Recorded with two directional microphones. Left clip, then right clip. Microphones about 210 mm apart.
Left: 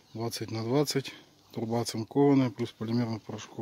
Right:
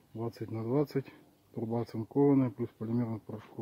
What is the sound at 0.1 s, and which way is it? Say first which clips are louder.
Speech: left 4 dB; 20° left (ahead or behind).